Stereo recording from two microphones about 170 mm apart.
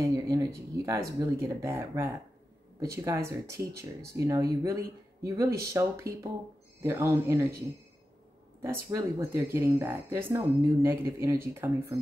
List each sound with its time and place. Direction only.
0.0 s speech: 20° right (ahead or behind)
8.6 s speech: 15° right (ahead or behind)